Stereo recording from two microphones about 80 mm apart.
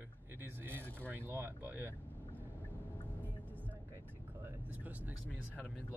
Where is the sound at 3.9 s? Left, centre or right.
Right.